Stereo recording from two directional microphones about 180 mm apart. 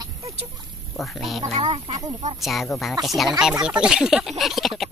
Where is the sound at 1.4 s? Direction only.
40° right (ahead or behind).